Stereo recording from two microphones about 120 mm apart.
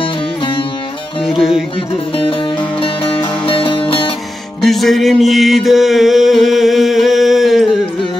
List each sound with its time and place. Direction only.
3.4 s music: 45° left (ahead or behind)
4.6 s music: centre (ahead or behind)